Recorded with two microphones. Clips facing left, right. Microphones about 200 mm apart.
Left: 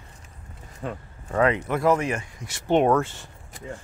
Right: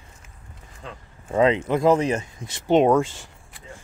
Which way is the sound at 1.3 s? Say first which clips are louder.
Right 3 dB; 20° right (ahead or behind).